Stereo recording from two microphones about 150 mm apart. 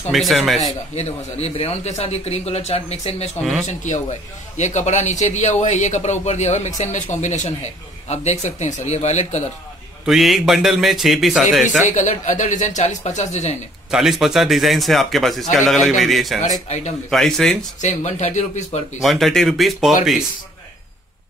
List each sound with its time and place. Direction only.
0.1 s a man's voice: centre (ahead or behind)
0.9 s speech: 45° left (ahead or behind)
3.6 s speech: 55° left (ahead or behind)
10.0 s a man's voice: centre (ahead or behind)
11.9 s speech: 50° left (ahead or behind)
13.8 s a man's voice: 5° right (ahead or behind)
16.6 s speech: 50° left (ahead or behind)
17.1 s a man's voice: 5° left (ahead or behind)
17.8 s speech: 50° left (ahead or behind)
18.9 s a man's voice: centre (ahead or behind)